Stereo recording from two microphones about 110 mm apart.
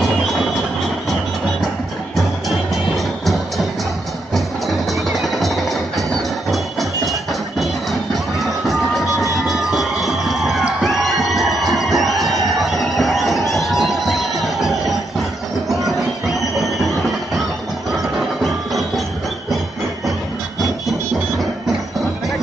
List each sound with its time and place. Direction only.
4.3 s music: centre (ahead or behind)
9.5 s crowd: centre (ahead or behind)
13.5 s music: centre (ahead or behind)